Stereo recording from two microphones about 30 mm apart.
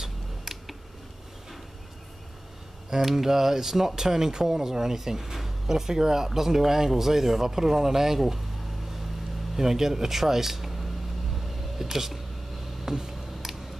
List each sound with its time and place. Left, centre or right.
0.0 s a sound: centre
2.9 s speech: centre
9.6 s speech: centre
12.8 s tick: centre